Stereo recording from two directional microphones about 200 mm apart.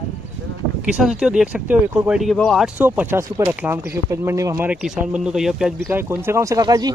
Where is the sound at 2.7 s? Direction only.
10° right (ahead or behind).